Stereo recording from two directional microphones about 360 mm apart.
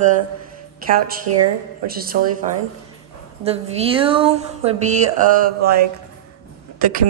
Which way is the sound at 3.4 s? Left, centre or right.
Centre.